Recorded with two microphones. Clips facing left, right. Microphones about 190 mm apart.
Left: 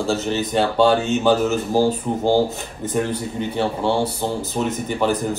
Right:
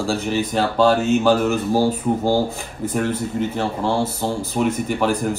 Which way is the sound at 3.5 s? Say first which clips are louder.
Left 1 dB; centre (ahead or behind).